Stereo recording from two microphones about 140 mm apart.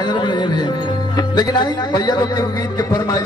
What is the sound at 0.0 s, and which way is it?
A man's voice, 30° left (ahead or behind).